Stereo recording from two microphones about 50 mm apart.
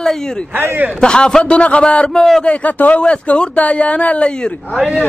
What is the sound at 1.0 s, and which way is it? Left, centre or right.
Speech, centre.